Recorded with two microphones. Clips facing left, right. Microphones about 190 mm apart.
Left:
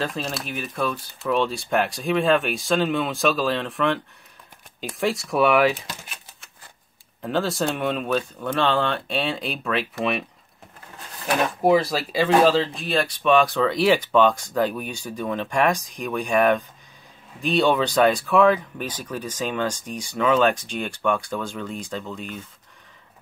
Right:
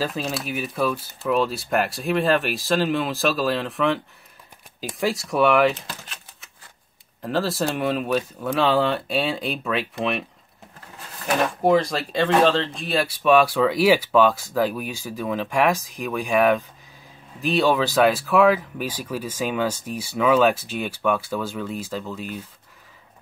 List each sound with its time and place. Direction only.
0.0 s speech: centre (ahead or behind)
7.2 s speech: centre (ahead or behind)
11.2 s speech: 5° left (ahead or behind)